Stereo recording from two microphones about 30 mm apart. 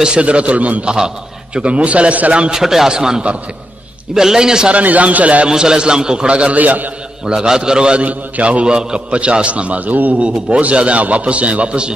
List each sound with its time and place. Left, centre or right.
0.2 s a man's voice: right
0.8 s a man's voice: right
1.6 s a man's voice: right
2.5 s a man's voice: centre
4.8 s a man's voice: right
5.5 s a man's voice: right
6.2 s a man's voice: right
6.5 s a man's voice: right
7.3 s a man's voice: right
8.0 s a man's voice: right
8.6 s a man's voice: right
9.1 s a man's voice: right
10.1 s a man's voice: right